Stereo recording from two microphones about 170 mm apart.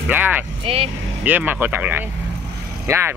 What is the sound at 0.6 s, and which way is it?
Speech, 35° right (ahead or behind).